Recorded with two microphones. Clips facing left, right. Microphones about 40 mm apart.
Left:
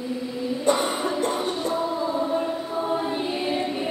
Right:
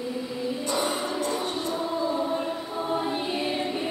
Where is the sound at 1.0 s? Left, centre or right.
Left.